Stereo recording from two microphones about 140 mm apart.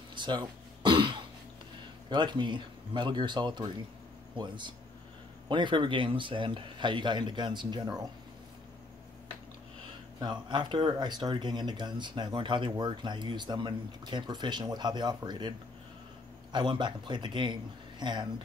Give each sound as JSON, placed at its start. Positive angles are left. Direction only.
{"t": 0.1, "sound": "throat clearing", "side_deg": -35}
{"t": 2.0, "sound": "speech", "side_deg": -35}
{"t": 10.2, "sound": "speech", "side_deg": -30}
{"t": 16.5, "sound": "speech", "side_deg": -35}